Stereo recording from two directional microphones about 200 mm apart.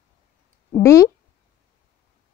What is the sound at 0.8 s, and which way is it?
Speech, 15° left (ahead or behind).